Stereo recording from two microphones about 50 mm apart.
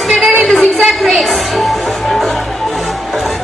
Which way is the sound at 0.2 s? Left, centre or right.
Centre.